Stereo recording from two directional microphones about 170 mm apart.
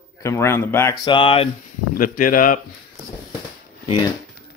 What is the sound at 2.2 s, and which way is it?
Speech, 55° left (ahead or behind).